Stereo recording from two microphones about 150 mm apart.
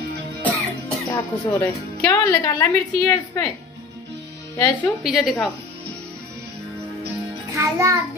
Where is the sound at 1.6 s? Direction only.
20° left (ahead or behind).